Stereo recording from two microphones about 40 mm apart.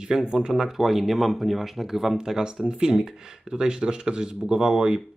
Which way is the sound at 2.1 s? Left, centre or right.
Centre.